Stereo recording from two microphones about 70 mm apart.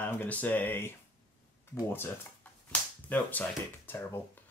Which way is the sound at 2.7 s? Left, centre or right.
Left.